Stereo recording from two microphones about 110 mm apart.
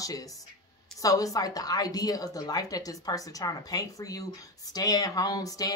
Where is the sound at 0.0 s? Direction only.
35° left (ahead or behind).